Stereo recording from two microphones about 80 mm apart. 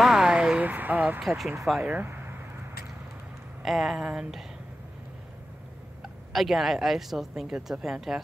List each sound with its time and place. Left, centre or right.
0.0 s a sound: centre
1.2 s speech: centre
1.8 s speech: centre
3.6 s speech: centre
6.0 s speech: centre